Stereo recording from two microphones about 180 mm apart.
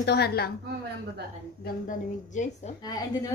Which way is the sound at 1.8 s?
40° left (ahead or behind).